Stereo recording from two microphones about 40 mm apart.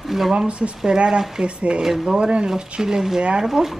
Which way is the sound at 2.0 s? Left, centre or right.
Right.